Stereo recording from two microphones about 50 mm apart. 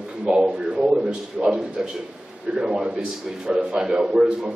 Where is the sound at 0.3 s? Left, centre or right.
Centre.